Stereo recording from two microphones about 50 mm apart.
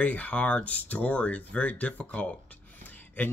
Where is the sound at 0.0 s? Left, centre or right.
Left.